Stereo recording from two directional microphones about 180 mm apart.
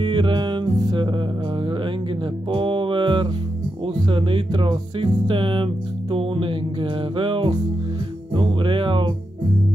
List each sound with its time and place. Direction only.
0.0 s music: 25° right (ahead or behind)
2.5 s music: 25° right (ahead or behind)
3.8 s speech: 30° right (ahead or behind)
8.3 s music: 25° right (ahead or behind)